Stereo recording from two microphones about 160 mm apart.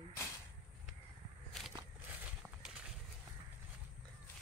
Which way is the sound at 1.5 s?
Centre (ahead or behind).